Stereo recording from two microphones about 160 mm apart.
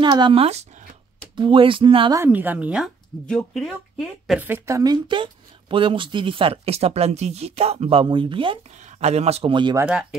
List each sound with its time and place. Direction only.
0.0 s speech: 30° right (ahead or behind)
1.3 s speech: 30° right (ahead or behind)
2.1 s a woman's voice: 10° right (ahead or behind)
4.4 s speech: 15° right (ahead or behind); by 8.7 s 30° right (ahead or behind)
8.7 s speech: 45° right (ahead or behind); by 9.8 s 30° right (ahead or behind)